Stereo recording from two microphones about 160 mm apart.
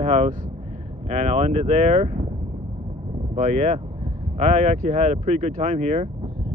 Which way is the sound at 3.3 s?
40° right (ahead or behind).